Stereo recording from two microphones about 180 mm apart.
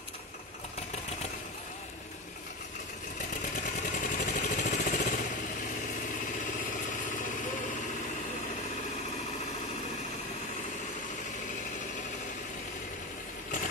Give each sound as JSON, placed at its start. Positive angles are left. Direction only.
{"t": 4.0, "sound": "vehicle", "side_deg": 45}